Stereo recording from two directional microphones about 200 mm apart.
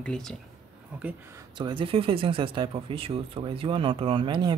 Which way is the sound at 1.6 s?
25° right (ahead or behind).